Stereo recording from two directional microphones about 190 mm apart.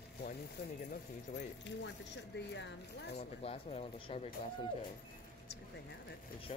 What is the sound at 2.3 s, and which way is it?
Speech, 65° left (ahead or behind).